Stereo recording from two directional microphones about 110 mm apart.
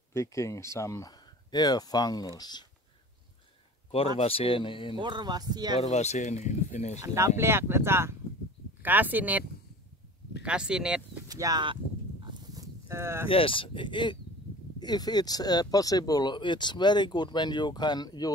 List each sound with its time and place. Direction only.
0.1 s speech: 30° left (ahead or behind)
1.5 s speech: 35° left (ahead or behind)
4.2 s speech: 55° left (ahead or behind)
4.9 s speech: 45° right (ahead or behind)
5.8 s speech: 90° left
7.0 s speech: 25° right (ahead or behind)
10.4 s speech: 10° right (ahead or behind)
11.2 s speech: 35° right (ahead or behind)
11.6 s a sound: 50° right (ahead or behind)
12.5 s livestock: 25° right (ahead or behind)
13.3 s speech: 55° left (ahead or behind); by 18.3 s 35° left (ahead or behind)